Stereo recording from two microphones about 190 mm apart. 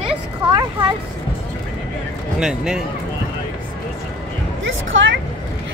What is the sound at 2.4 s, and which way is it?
Speech, 5° right (ahead or behind).